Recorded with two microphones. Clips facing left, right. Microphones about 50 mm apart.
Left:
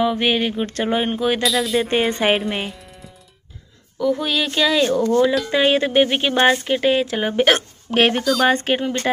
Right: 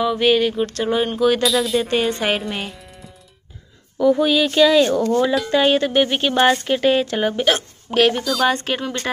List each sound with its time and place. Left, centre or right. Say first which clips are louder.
0.0 s a sound: right 2 dB; centre
1.4 s speech: right 1 dB; centre
1.9 s a sound: even; left
2.2 s speech: left 3 dB; centre
2.7 s music: even; centre
4.0 s speech: right 4 dB; centre
5.5 s speech: even; centre
7.3 s speech: left 3 dB; left
8.2 s speech: left 2 dB; centre
8.5 s a sound: left 2 dB; left